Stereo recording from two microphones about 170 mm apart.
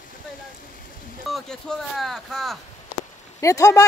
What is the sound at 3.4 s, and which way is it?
Speech, 15° left (ahead or behind).